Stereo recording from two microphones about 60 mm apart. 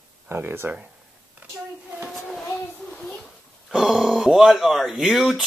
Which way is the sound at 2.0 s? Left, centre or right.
Centre.